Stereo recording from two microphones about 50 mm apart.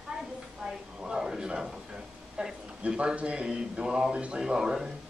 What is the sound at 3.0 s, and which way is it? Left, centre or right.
A woman's voice, right.